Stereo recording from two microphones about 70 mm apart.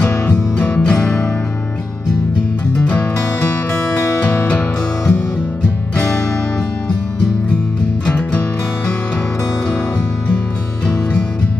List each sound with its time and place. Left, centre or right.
0.0 s music: centre
2.7 s music: centre
4.2 s music: centre
8.0 s music: centre